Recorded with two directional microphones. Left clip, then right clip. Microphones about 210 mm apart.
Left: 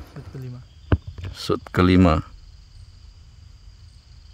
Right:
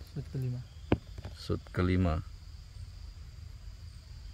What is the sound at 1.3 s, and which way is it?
Speech, 50° left (ahead or behind).